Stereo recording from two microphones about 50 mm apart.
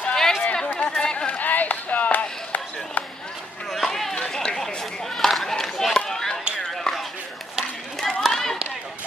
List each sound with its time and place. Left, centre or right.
0.1 s chatter: centre
0.7 s chop: left
3.8 s run: centre
5.9 s chop: centre
6.7 s ping: centre
8.2 s a sound: centre